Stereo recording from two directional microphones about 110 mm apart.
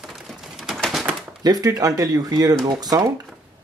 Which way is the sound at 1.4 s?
35° right (ahead or behind).